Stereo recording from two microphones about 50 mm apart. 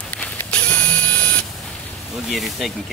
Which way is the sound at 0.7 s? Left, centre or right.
Left.